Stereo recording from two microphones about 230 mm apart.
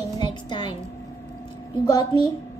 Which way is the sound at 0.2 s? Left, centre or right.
Centre.